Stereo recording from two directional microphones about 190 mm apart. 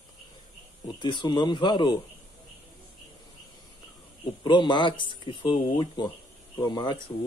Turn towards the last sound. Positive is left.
turn(degrees=25)  # may be behind; listen again after turning